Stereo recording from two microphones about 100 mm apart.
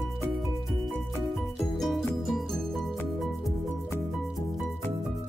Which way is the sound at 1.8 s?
5° left (ahead or behind).